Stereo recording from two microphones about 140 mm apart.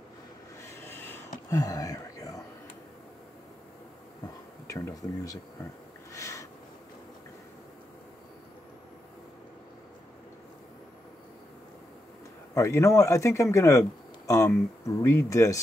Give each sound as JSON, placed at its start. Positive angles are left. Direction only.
{"t": 0.6, "sound": "rub", "side_deg": 20}
{"t": 1.5, "sound": "whispering", "side_deg": 25}
{"t": 4.6, "sound": "speech", "side_deg": 25}
{"t": 6.1, "sound": "a sound", "side_deg": 20}
{"t": 12.5, "sound": "speech", "side_deg": 20}